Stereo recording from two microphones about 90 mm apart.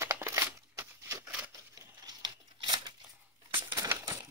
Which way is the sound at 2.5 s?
55° right (ahead or behind).